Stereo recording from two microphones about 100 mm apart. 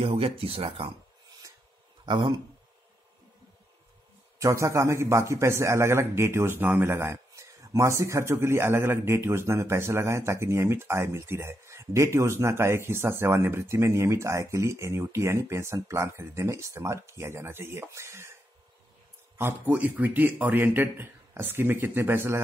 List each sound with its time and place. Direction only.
0.0 s speech: 70° right (ahead or behind)
2.0 s speech: 50° right (ahead or behind)
4.4 s a man's voice: 30° right (ahead or behind)
19.3 s a man's voice: 20° right (ahead or behind)